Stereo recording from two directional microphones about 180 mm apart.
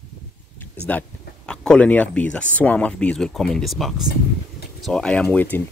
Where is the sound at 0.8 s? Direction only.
5° left (ahead or behind).